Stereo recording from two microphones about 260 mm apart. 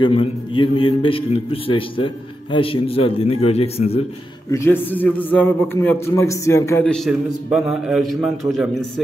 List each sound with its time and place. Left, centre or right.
0.0 s a man's voice: centre
4.5 s a man's voice: centre